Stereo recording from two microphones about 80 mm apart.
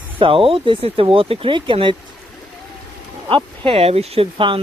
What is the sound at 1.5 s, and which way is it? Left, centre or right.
Speech, right.